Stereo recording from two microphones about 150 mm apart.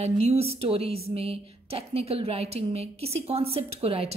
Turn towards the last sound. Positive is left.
turn(degrees=-40)  # may be behind; listen again after turning